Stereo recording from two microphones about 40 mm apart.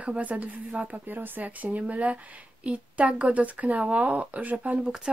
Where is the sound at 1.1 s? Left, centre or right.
Right.